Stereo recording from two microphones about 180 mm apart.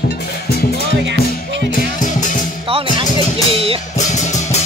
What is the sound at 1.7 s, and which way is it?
Music, 50° left (ahead or behind).